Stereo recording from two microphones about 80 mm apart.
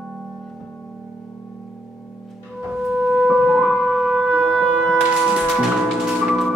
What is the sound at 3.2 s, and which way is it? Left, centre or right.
Music, centre.